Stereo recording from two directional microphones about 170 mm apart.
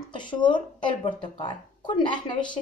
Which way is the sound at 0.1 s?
25° left (ahead or behind).